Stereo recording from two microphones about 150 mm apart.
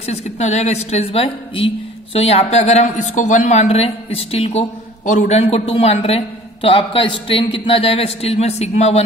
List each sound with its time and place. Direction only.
0.0 s a man's voice: 50° left (ahead or behind)